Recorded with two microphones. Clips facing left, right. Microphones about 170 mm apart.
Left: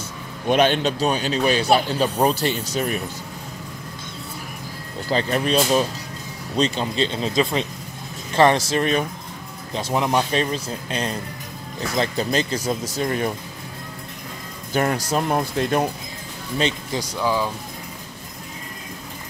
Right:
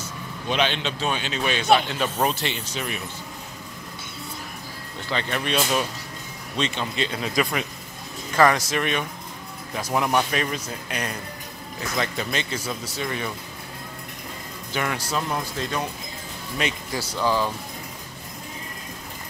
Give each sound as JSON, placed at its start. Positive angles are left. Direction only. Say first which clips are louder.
{"t": 0.5, "sound": "a man's voice", "louder": "left 7 dB", "side_deg": 45}
{"t": 5.0, "sound": "a man's voice", "louder": "left 6 dB", "side_deg": 35}
{"t": 14.7, "sound": "speech", "louder": "left 6 dB", "side_deg": 40}
{"t": 16.5, "sound": "speech", "louder": "left 4 dB", "side_deg": 30}
{"t": 17.1, "sound": "speech", "louder": "even", "side_deg": 10}